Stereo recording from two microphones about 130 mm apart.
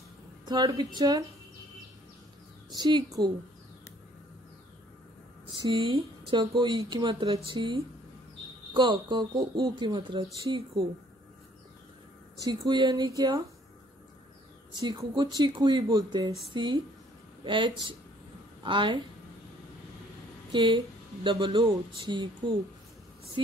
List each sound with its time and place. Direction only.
0.5 s speech: 35° right (ahead or behind)
2.7 s speech: 35° right (ahead or behind)
5.5 s speech: 35° right (ahead or behind)
12.4 s speech: 35° right (ahead or behind)
14.7 s a woman's voice: 35° right (ahead or behind)
20.5 s speech: 40° right (ahead or behind)
23.4 s speech: 40° right (ahead or behind)